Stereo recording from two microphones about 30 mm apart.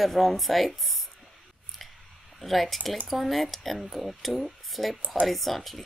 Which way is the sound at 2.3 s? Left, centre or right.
Centre.